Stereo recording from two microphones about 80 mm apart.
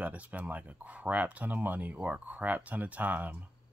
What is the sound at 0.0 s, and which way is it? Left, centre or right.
Speech, centre.